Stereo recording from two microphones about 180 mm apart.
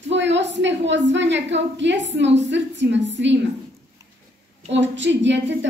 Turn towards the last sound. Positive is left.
turn(degrees=-80)